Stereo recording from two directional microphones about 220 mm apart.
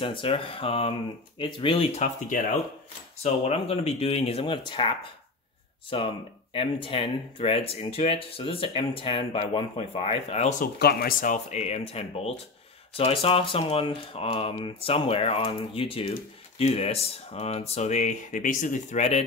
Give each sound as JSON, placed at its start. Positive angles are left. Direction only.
{"t": 0.0, "sound": "speech", "side_deg": 25}
{"t": 10.8, "sound": "speech", "side_deg": 45}